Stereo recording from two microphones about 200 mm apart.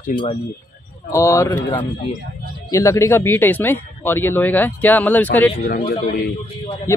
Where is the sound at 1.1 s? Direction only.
15° left (ahead or behind).